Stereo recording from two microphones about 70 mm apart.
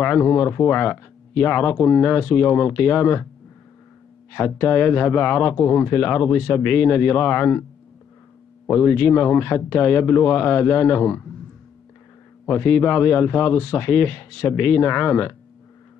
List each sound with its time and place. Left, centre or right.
0.0 s speech: left
4.3 s speech: left
8.6 s speech: left
12.4 s speech: left